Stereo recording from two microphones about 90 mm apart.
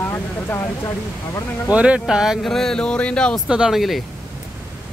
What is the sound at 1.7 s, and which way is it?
Speech, 15° right (ahead or behind).